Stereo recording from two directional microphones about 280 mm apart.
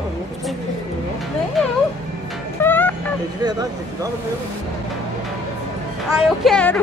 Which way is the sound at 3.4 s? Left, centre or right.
Centre.